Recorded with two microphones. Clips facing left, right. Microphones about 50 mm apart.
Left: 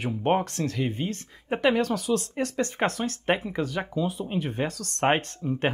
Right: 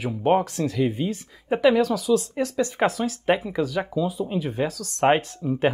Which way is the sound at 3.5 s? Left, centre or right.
Left.